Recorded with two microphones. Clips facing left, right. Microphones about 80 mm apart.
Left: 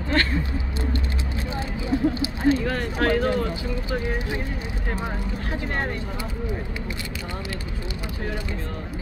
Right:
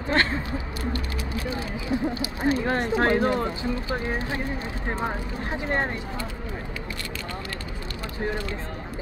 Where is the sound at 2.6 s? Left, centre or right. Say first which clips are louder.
Right 1 dB; right.